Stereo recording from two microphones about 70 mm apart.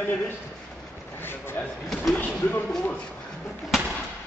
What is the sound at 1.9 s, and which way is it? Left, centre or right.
Speech, centre.